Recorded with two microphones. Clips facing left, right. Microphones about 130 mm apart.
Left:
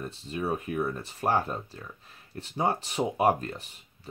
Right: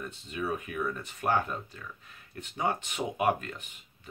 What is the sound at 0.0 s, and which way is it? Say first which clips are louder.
Speech: left 3 dB; 35° left (ahead or behind).